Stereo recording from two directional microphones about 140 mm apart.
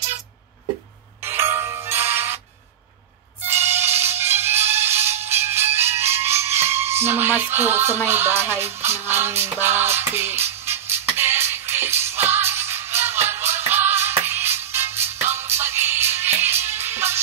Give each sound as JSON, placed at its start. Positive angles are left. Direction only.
{"t": 1.2, "sound": "music", "side_deg": -20}
{"t": 3.4, "sound": "music", "side_deg": -15}